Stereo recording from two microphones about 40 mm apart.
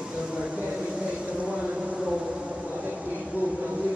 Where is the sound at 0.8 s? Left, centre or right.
Right.